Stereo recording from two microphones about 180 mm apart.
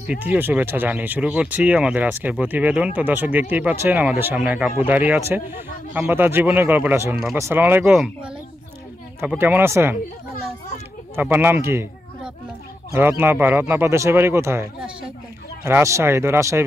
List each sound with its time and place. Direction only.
0.1 s speech: 10° right (ahead or behind)
11.1 s speech: 10° right (ahead or behind)